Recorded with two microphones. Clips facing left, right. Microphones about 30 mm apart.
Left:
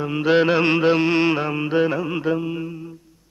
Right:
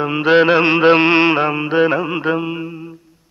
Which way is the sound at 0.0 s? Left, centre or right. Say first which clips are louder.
Right 5 dB; right.